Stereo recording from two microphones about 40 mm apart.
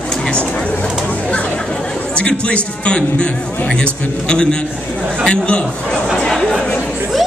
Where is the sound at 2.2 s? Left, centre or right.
Left.